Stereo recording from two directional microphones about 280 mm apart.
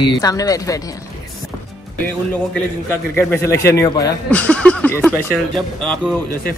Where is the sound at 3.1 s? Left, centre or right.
Centre.